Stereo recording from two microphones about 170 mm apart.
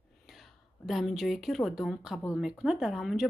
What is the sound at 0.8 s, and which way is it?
Speech, centre (ahead or behind).